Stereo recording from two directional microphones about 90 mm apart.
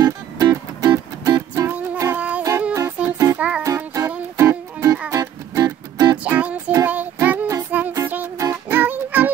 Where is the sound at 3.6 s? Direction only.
30° right (ahead or behind).